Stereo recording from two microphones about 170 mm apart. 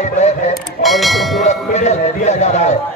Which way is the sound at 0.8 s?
Centre (ahead or behind).